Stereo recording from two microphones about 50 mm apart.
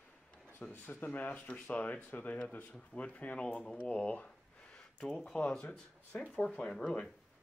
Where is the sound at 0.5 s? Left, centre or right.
Left.